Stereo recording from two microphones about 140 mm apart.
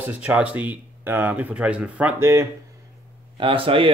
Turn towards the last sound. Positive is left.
turn(degrees=-40)  # may be behind; listen again after turning